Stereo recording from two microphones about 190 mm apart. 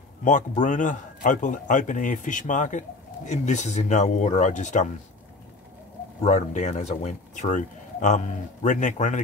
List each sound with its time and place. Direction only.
0.2 s speech: 40° left (ahead or behind)
6.2 s speech: 40° left (ahead or behind)